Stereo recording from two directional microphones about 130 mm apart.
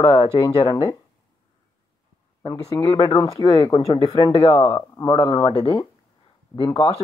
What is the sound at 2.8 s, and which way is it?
Speech, 45° left (ahead or behind).